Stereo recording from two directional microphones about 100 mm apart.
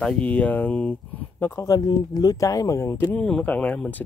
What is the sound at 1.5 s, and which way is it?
Speech, 30° left (ahead or behind).